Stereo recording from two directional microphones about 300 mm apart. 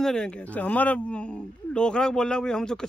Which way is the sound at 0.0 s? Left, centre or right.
Centre.